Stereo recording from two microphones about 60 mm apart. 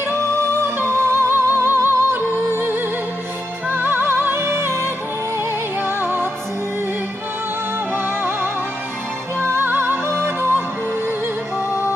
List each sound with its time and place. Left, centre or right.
0.7 s music: right
5.8 s music: right
7.9 s music: right